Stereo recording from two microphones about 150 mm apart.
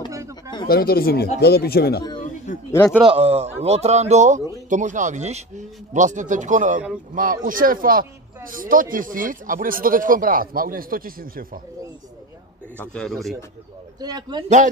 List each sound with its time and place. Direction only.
0.7 s speech: 90° left
3.1 s speech: 40° right (ahead or behind); by 11.6 s 70° right (ahead or behind)
12.7 s a man's voice: 5° left (ahead or behind)
14.0 s a man's voice: 25° right (ahead or behind)